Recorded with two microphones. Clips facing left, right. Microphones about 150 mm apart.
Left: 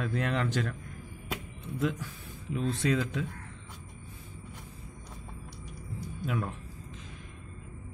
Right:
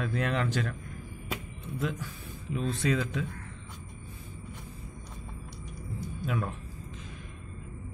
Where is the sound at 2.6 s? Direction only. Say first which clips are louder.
Even; 20° left (ahead or behind).